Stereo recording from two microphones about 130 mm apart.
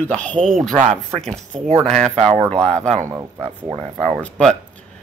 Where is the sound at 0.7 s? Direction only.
70° right (ahead or behind).